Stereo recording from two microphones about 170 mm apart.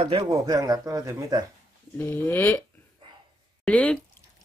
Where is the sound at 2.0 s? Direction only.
10° left (ahead or behind).